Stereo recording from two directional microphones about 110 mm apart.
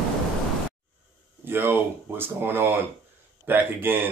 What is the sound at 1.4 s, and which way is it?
A man's voice, 20° right (ahead or behind).